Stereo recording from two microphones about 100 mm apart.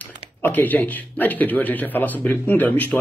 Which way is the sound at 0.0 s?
15° left (ahead or behind).